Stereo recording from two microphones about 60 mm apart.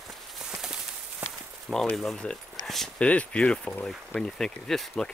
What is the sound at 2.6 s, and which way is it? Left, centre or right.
Dog, centre.